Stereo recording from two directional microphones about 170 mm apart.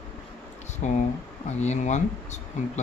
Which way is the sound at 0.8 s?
45° left (ahead or behind).